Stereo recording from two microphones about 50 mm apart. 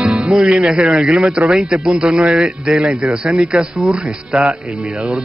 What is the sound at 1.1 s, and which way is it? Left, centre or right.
Speech, centre.